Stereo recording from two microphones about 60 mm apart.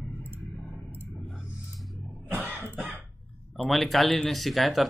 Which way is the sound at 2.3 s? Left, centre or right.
Right.